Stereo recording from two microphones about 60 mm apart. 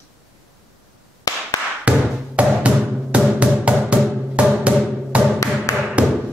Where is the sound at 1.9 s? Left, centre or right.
Right.